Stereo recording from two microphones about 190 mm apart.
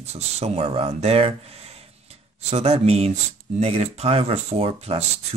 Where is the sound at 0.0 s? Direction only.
35° right (ahead or behind).